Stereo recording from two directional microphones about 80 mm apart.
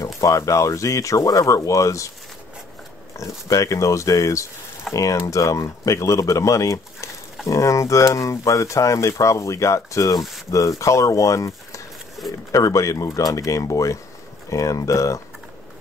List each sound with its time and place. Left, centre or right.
0.2 s speech: left
3.4 s speech: left
10.1 s speech: centre
10.8 s speech: left